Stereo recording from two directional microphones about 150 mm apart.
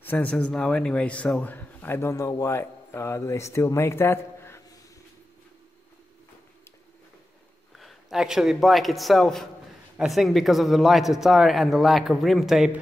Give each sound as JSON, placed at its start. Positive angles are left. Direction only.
{"t": 0.0, "sound": "speech", "side_deg": 10}
{"t": 7.7, "sound": "a man's voice", "side_deg": 0}